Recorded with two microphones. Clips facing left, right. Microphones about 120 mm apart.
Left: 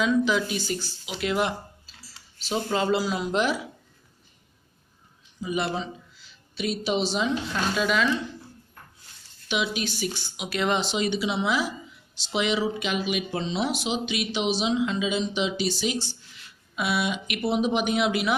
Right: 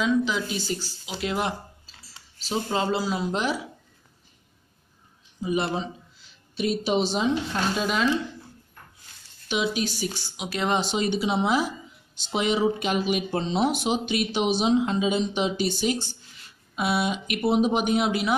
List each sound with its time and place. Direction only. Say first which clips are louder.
0.0 s speech: left 1 dB; 25° right (ahead or behind)
2.7 s speech: left 1 dB; 25° right (ahead or behind)
5.4 s speech: right 2 dB; 35° right (ahead or behind)
9.5 s speech: right 2 dB; 35° right (ahead or behind)
16.7 s speech: right 2 dB; 40° right (ahead or behind)